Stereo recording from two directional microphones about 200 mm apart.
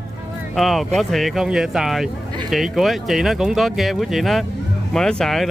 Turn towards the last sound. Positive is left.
turn(degrees=5)  # may be behind; listen again after turning